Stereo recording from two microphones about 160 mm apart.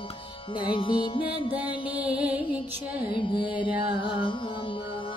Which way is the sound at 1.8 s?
10° right (ahead or behind).